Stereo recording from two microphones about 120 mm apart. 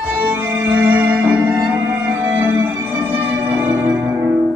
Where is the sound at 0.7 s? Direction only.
15° right (ahead or behind).